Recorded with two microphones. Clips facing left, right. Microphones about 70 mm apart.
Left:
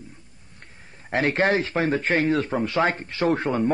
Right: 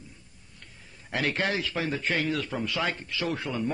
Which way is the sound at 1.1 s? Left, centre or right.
Left.